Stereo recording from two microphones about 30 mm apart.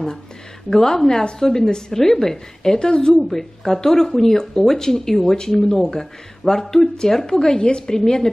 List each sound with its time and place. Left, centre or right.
0.7 s a woman's voice: centre
2.8 s a woman's voice: left
3.6 s a woman's voice: centre